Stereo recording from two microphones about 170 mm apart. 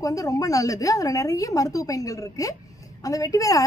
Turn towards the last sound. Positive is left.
turn(degrees=20)  # may be behind; listen again after turning